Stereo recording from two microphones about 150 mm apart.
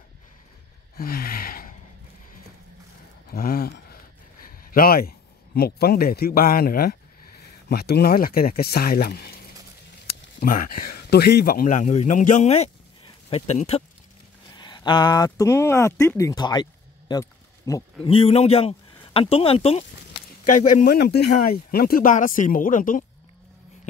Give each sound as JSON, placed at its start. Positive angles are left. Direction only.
{"t": 0.9, "sound": "gasp", "side_deg": 85}
{"t": 3.3, "sound": "speech", "side_deg": 85}
{"t": 10.4, "sound": "a man's voice", "side_deg": 70}
{"t": 14.6, "sound": "speech", "side_deg": 30}
{"t": 17.1, "sound": "a sound", "side_deg": 20}
{"t": 18.0, "sound": "speech", "side_deg": 40}
{"t": 20.4, "sound": "speech", "side_deg": 60}